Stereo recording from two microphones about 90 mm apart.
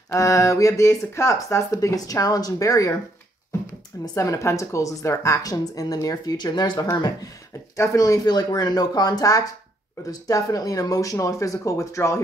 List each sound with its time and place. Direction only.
0.1 s a woman's voice: 35° left (ahead or behind)
4.1 s a woman's voice: 35° left (ahead or behind)
7.7 s a woman's voice: 35° left (ahead or behind)